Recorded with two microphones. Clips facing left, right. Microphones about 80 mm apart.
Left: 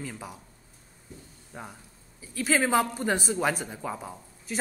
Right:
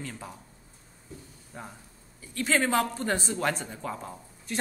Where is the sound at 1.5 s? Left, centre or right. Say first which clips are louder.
Left 1 dB; centre.